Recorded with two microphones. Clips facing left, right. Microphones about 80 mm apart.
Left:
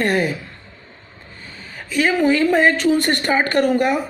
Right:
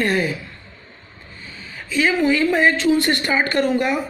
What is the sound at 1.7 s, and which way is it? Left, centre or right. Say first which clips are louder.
A woman's voice: left 1 dB; left.